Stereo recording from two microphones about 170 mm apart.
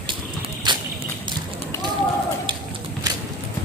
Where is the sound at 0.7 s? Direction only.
25° right (ahead or behind).